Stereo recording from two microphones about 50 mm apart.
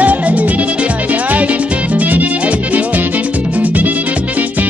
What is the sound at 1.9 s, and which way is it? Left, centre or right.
Music, right.